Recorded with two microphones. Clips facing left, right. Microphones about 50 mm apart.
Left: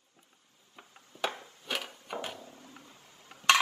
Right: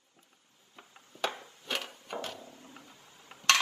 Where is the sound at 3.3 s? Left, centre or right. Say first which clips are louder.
Right 1 dB; centre.